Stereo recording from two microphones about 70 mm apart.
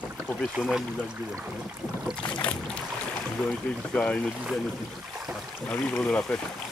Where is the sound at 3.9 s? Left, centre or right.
Centre.